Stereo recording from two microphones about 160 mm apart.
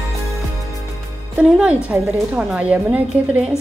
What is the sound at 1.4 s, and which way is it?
A woman's voice, 5° right (ahead or behind).